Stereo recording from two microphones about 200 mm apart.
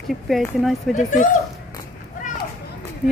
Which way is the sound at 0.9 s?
40° left (ahead or behind).